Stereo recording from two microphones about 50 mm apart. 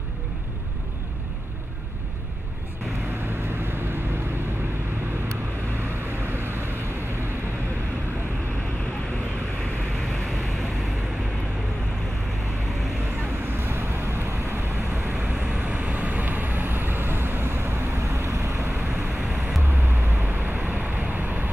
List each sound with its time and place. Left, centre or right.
6.0 s vehicle: right
13.5 s vehicle: right
15.6 s vehicle: right
20.1 s vehicle: right